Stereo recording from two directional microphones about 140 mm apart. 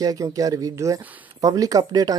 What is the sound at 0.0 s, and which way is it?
Speech, 25° right (ahead or behind).